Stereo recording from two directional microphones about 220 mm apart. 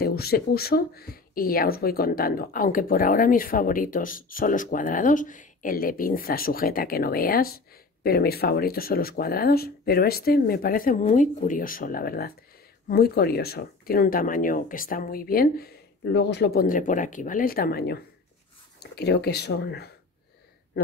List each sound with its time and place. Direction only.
0.0 s speech: 45° left (ahead or behind)